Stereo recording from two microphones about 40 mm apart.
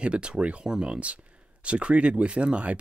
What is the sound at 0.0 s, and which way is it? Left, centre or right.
Speech, right.